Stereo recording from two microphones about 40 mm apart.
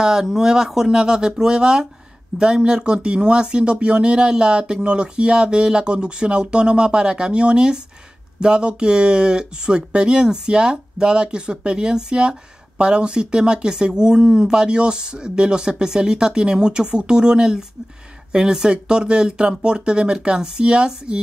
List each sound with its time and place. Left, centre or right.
0.0 s speech: centre